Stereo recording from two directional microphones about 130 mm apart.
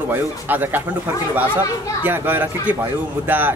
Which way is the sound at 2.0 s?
15° right (ahead or behind).